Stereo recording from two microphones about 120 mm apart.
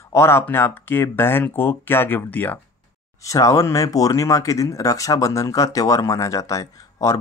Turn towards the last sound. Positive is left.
turn(degrees=30)  # may be behind; listen again after turning